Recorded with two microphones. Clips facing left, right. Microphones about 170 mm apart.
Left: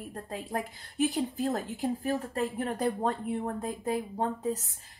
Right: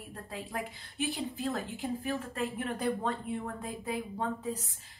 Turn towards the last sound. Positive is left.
turn(degrees=40)  # may be behind; listen again after turning